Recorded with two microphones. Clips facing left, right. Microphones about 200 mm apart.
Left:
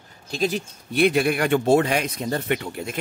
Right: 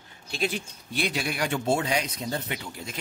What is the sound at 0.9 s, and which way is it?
Speech, 55° left (ahead or behind).